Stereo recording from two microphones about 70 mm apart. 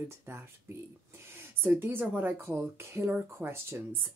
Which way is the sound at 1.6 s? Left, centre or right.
Right.